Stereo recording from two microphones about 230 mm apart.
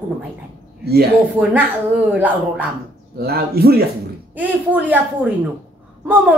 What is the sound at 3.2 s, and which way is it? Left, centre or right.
Speech, right.